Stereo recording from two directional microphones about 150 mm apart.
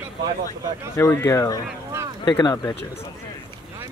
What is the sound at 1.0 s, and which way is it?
Speech, 15° left (ahead or behind).